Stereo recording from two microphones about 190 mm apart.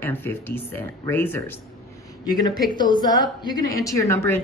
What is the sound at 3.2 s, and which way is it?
Speech, 20° left (ahead or behind).